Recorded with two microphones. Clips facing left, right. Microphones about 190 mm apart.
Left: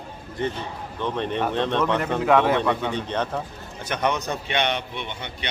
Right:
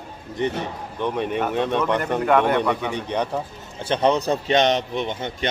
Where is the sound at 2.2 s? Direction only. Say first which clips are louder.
Even; 5° left (ahead or behind).